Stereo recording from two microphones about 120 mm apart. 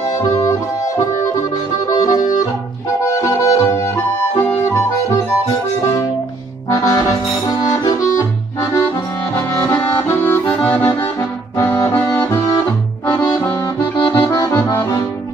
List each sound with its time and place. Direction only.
0.0 s music: 35° left (ahead or behind)
0.5 s harmonica: 25° left (ahead or behind)
1.9 s accordion: 30° left (ahead or behind)
3.1 s harmonica: 25° left (ahead or behind)
6.7 s accordion: 25° left (ahead or behind)